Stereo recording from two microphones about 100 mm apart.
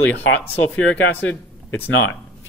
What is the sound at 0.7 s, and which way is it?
Speech, 15° left (ahead or behind).